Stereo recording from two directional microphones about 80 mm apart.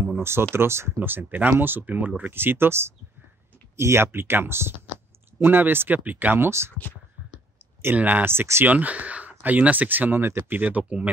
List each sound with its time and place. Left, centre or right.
0.2 s speech: right
7.8 s speech: right
8.6 s speech: centre
10.6 s speech: centre